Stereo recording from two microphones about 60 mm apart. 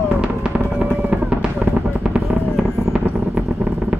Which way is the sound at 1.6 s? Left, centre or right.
Right.